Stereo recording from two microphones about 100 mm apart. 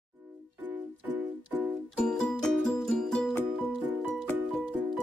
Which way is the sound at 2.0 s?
5° left (ahead or behind).